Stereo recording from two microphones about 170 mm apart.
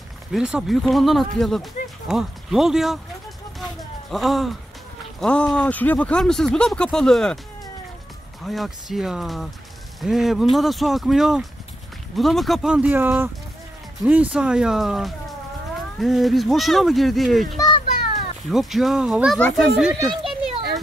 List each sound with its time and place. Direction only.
0.3 s speech: 5° right (ahead or behind)
4.1 s speech: centre (ahead or behind)
8.5 s speech: centre (ahead or behind)
17.6 s children playing: 25° left (ahead or behind)
18.5 s speech: centre (ahead or behind)